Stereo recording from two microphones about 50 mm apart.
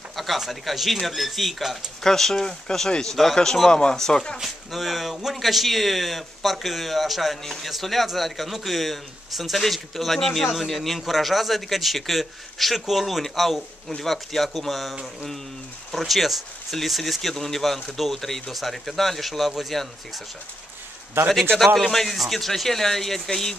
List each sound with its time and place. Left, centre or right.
0.1 s speech: centre
4.4 s speech: centre
21.2 s a man's voice: right
21.7 s speech: centre